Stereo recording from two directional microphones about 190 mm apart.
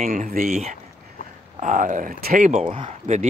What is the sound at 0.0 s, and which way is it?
Speech, 45° right (ahead or behind).